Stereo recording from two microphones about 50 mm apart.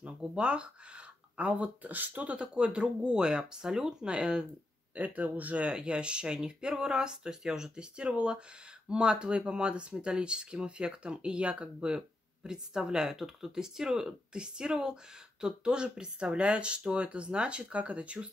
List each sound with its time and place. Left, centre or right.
0.4 s speech: centre
2.3 s speech: centre
4.9 s speech: right
5.7 s speech: centre